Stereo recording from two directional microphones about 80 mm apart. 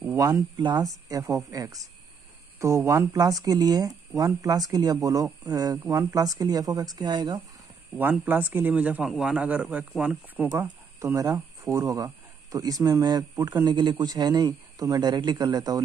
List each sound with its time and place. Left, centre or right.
0.2 s speech: right
8.0 s speech: right
11.1 s speech: right
13.7 s a man's voice: right